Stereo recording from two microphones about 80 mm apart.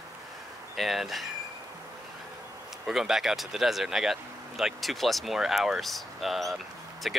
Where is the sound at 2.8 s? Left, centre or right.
Centre.